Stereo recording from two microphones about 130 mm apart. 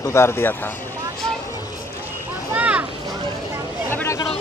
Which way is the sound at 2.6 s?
10° right (ahead or behind).